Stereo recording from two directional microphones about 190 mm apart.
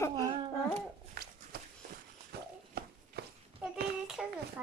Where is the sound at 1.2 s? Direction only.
55° right (ahead or behind).